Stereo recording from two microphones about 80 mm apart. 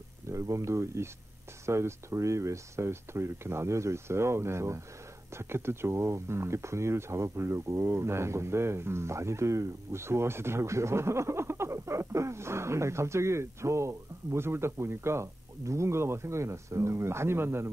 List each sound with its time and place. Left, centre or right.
0.3 s speech: right